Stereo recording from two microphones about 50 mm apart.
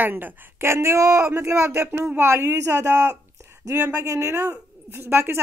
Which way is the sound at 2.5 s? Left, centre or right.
Right.